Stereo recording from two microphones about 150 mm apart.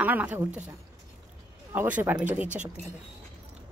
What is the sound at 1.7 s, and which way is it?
Speech, 15° right (ahead or behind).